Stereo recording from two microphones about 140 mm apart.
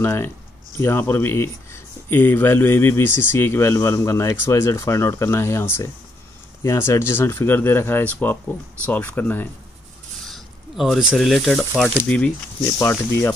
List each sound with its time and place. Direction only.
0.0 s speech: 15° left (ahead or behind)
10.2 s speech: centre (ahead or behind)
12.7 s speech: 20° left (ahead or behind)